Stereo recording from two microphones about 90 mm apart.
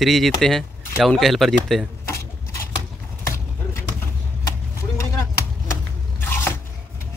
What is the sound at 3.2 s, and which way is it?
Clip-clop, 30° left (ahead or behind).